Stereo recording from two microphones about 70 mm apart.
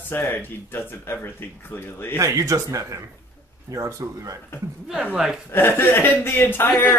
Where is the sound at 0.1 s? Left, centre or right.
Left.